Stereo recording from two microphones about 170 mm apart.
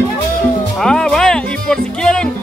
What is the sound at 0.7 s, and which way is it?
Music, 5° left (ahead or behind).